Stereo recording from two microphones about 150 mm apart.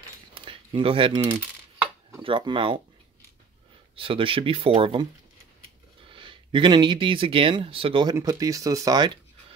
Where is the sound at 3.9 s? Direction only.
35° right (ahead or behind).